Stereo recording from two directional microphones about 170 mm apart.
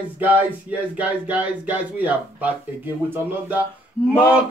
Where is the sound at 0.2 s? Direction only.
10° right (ahead or behind).